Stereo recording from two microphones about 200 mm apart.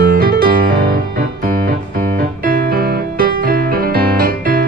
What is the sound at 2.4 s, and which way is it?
Music, 50° right (ahead or behind).